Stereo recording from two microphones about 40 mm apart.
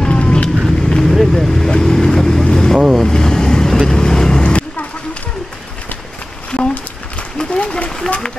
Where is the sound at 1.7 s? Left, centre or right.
Centre.